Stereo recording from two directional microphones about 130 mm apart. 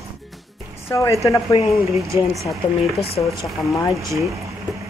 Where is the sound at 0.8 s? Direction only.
25° left (ahead or behind).